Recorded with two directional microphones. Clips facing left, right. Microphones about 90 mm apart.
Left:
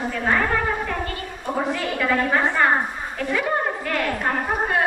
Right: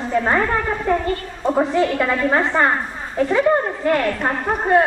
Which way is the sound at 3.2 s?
25° right (ahead or behind).